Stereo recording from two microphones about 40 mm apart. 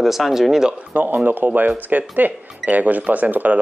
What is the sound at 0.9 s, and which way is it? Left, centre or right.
Speech, right.